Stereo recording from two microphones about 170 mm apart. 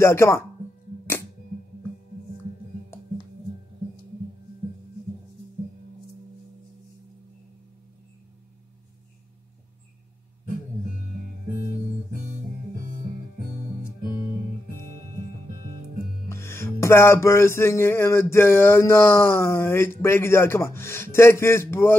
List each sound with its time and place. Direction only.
0.0 s music: 15° left (ahead or behind)
16.3 s music: 15° left (ahead or behind)